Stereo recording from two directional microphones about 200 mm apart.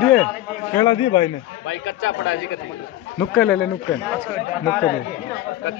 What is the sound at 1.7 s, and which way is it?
Speech, 75° left (ahead or behind).